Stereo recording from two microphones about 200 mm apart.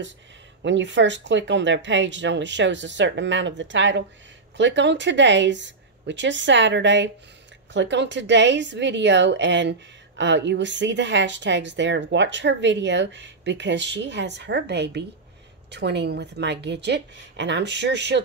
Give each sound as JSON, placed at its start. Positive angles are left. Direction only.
{"t": 0.7, "sound": "a woman's voice", "side_deg": -65}